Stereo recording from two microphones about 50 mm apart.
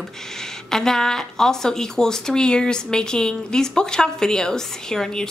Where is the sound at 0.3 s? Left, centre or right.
Centre.